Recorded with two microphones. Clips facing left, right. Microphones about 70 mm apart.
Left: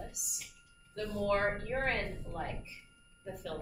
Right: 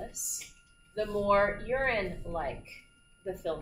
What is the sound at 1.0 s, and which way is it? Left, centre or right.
A woman's voice, right.